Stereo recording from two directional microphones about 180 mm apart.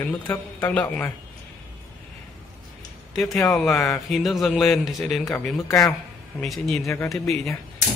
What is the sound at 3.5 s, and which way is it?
Speech, centre (ahead or behind).